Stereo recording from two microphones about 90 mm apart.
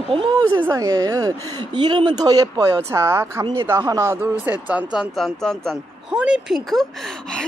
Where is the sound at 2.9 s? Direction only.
30° right (ahead or behind).